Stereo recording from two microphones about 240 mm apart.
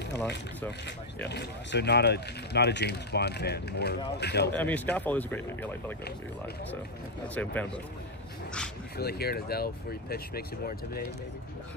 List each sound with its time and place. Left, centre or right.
1.3 s speech: left
4.5 s speech: centre
7.3 s speech: centre
8.9 s speech: left